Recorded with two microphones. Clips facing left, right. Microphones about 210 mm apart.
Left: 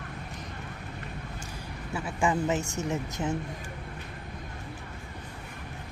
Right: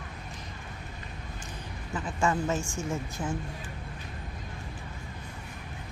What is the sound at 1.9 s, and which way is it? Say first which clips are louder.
A man's voice: left 1 dB; 10° left (ahead or behind).